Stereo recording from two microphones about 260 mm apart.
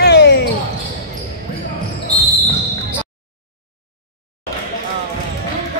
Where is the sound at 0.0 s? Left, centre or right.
Left.